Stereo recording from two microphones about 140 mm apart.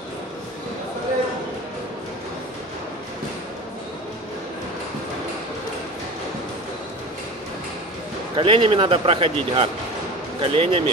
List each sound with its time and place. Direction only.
8.4 s a man's voice: 40° right (ahead or behind)